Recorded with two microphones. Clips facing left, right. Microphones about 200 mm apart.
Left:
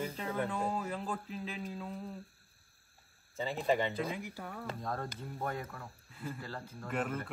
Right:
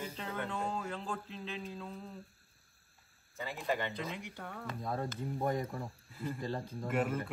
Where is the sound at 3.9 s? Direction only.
5° left (ahead or behind).